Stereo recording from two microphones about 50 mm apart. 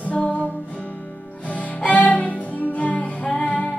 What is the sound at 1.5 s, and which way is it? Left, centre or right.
Music, left.